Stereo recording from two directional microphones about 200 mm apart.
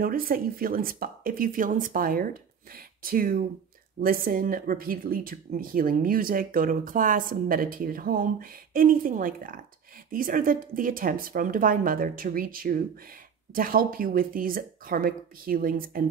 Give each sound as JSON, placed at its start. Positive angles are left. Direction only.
{"t": 0.0, "sound": "speech", "side_deg": -45}